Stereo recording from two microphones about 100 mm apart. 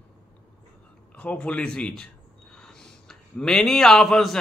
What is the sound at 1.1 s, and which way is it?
A man's voice, 10° left (ahead or behind).